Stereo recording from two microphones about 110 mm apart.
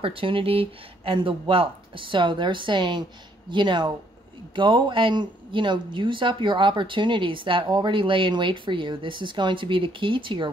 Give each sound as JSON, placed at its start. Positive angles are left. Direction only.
{"t": 0.0, "sound": "speech", "side_deg": -55}